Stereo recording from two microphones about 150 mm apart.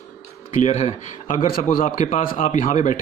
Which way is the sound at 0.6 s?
50° left (ahead or behind).